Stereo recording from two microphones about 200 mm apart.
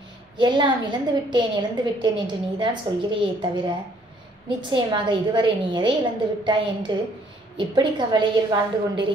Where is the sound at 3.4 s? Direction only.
20° right (ahead or behind).